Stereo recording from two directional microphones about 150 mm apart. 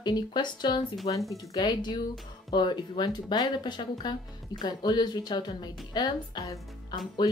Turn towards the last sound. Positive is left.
turn(degrees=25)  # may be behind; listen again after turning